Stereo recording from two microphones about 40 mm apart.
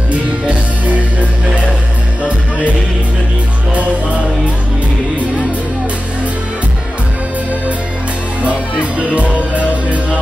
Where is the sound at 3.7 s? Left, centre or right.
Right.